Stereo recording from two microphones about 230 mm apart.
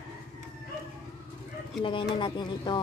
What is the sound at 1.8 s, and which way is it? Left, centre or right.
Speech, left.